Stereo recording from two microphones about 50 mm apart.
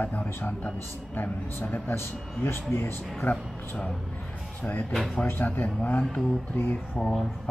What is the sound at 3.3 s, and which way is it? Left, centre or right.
Speech, centre.